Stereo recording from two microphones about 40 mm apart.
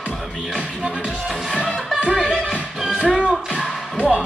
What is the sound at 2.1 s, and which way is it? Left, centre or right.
Music, centre.